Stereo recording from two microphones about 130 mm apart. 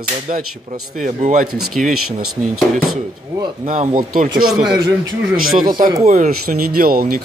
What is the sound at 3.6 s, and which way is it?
Speech, 75° right (ahead or behind).